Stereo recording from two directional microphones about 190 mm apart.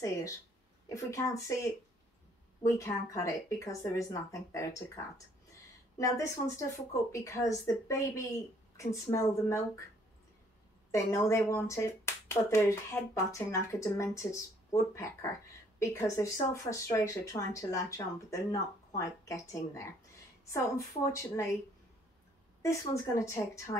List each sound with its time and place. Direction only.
0.8 s speech: 15° left (ahead or behind)
10.9 s speech: 15° left (ahead or behind)
22.6 s speech: 15° left (ahead or behind)